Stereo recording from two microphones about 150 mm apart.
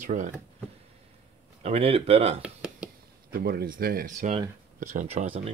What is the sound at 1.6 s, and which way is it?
Speech, 40° right (ahead or behind).